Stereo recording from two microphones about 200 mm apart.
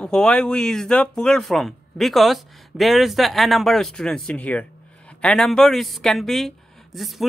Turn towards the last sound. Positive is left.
turn(degrees=0)  # may be behind; listen again after turning